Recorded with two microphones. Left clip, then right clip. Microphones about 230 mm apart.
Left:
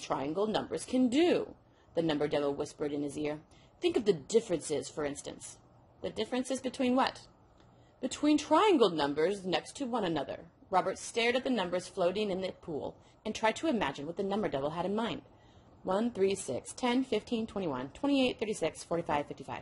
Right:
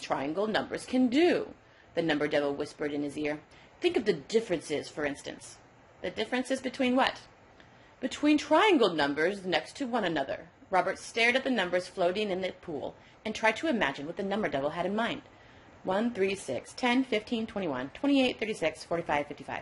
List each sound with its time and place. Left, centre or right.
0.0 s a woman's voice: left